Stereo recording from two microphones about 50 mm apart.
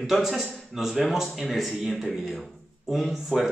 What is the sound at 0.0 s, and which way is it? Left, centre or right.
A man's voice, centre.